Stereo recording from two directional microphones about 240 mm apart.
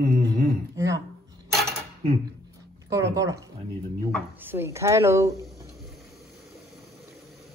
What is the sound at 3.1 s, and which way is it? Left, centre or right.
Speech, centre.